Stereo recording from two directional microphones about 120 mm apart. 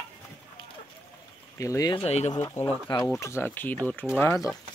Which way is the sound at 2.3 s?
25° left (ahead or behind).